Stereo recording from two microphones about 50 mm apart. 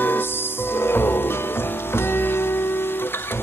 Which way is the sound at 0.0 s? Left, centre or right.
Left.